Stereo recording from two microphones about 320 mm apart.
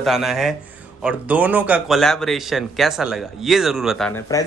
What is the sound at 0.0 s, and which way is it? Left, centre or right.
A man's voice, centre.